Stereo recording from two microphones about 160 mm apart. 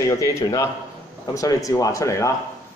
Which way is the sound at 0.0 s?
20° left (ahead or behind).